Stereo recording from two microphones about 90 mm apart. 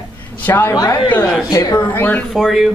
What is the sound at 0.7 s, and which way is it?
Speech, 45° left (ahead or behind).